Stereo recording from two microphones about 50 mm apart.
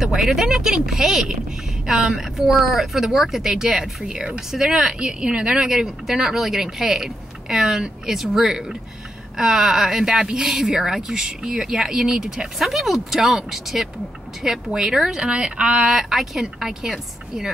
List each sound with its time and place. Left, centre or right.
0.0 s speech: centre